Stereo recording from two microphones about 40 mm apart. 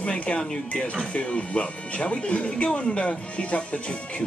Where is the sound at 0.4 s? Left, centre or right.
Centre.